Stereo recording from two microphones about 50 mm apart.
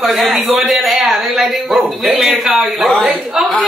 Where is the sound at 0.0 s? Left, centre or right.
Centre.